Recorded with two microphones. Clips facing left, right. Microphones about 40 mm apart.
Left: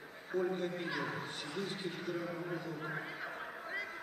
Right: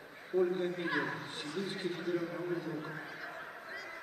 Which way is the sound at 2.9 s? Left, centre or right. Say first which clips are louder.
Left 2 dB; centre.